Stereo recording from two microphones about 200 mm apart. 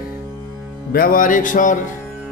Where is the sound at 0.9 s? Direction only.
45° left (ahead or behind).